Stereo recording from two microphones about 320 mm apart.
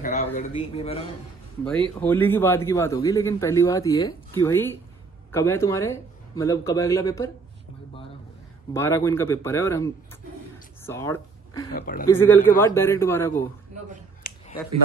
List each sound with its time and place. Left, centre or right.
0.0 s a man's voice: left
1.6 s a man's voice: centre
8.7 s a man's voice: centre
10.8 s a sound: centre
11.7 s speech: left
12.1 s a man's voice: centre
14.2 s a sound: left